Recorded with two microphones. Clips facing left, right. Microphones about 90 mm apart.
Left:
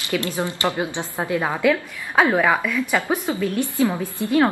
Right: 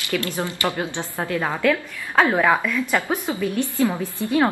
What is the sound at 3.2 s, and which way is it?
Speech, 15° right (ahead or behind).